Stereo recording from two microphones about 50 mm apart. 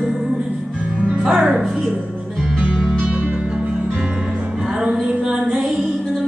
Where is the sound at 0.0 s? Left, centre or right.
Centre.